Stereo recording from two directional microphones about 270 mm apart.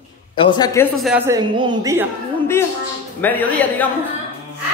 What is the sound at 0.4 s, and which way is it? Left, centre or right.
Speech, centre.